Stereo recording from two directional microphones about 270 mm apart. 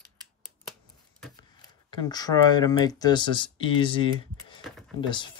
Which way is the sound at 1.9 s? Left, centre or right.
Centre.